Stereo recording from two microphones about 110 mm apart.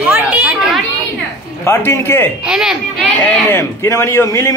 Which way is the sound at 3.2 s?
20° left (ahead or behind).